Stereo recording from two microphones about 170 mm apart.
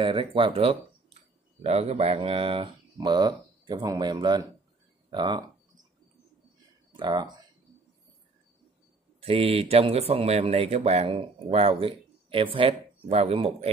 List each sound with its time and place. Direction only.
0.0 s speech: 30° right (ahead or behind)
5.1 s a sound: 25° right (ahead or behind)
6.9 s speech: 25° right (ahead or behind)
9.2 s speech: 35° right (ahead or behind)